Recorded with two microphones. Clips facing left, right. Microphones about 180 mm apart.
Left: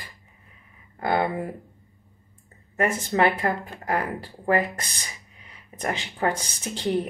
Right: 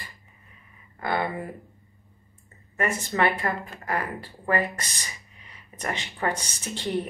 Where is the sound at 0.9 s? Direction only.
40° left (ahead or behind).